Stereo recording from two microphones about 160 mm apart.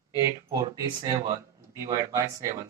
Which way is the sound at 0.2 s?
20° right (ahead or behind).